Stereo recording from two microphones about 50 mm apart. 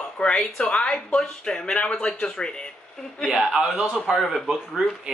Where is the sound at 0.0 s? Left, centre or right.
Centre.